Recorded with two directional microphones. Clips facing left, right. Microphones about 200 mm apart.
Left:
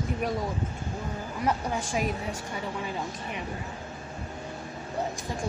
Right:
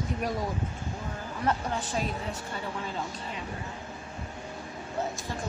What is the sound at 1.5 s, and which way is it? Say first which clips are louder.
Speech: left 1 dB; 10° left (ahead or behind).